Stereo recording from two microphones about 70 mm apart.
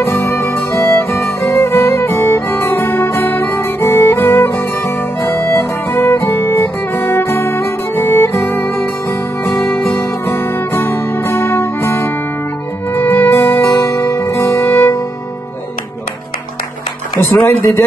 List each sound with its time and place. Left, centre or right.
0.0 s music: left
10.2 s music: left
17.2 s speech: left